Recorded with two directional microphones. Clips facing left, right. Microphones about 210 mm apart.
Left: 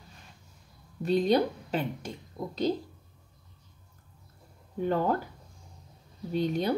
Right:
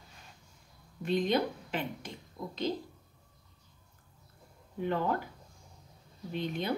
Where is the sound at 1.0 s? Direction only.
40° left (ahead or behind).